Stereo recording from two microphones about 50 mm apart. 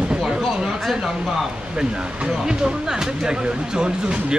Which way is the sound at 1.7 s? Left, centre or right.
Centre.